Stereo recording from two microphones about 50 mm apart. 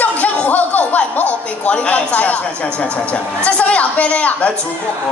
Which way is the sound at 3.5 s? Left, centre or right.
Left.